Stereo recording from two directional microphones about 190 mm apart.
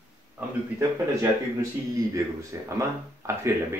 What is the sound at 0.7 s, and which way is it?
Speech, 20° right (ahead or behind).